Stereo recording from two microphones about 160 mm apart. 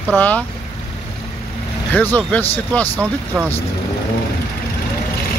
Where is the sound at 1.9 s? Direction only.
10° left (ahead or behind).